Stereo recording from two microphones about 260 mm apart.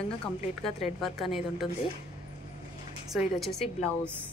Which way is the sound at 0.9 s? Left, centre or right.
Centre.